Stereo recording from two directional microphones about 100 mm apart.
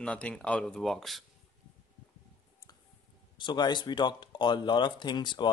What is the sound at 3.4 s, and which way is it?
Speech, 50° left (ahead or behind).